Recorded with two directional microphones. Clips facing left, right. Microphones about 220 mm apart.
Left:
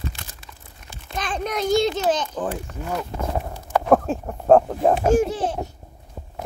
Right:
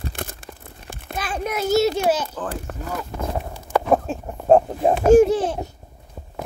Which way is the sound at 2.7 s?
65° right (ahead or behind).